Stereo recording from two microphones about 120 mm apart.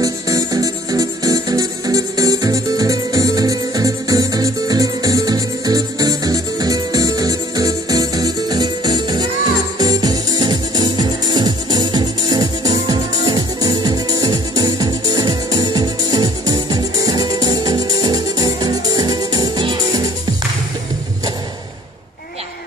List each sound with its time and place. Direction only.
0.0 s music: 30° right (ahead or behind)